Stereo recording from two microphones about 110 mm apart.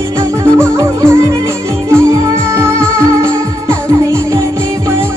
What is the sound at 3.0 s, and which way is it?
Music, 25° right (ahead or behind).